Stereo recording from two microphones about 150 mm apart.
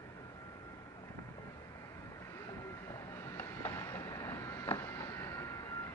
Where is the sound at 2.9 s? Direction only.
20° left (ahead or behind).